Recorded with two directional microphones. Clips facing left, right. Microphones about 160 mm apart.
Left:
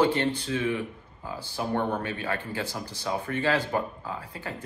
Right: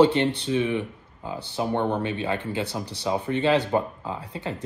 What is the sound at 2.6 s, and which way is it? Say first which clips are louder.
Speech: right 4 dB; 65° right (ahead or behind).